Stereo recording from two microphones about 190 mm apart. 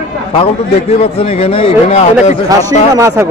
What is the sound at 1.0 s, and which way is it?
Speech, 30° left (ahead or behind).